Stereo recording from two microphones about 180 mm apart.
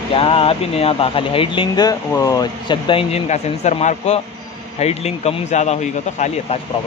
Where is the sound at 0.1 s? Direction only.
30° left (ahead or behind).